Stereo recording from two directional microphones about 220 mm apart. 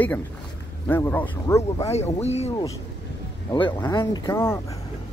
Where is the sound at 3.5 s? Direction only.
15° left (ahead or behind).